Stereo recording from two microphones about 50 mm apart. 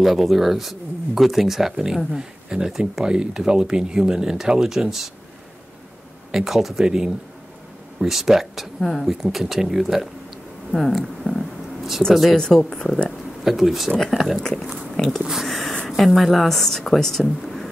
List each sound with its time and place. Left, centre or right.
0.0 s speech: centre
6.3 s speech: centre
12.1 s speech: centre
12.4 s speech: centre
13.4 s speech: centre
14.4 s speech: centre